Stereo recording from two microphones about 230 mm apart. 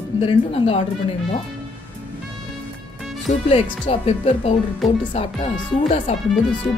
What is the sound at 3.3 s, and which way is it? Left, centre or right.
Speech, left.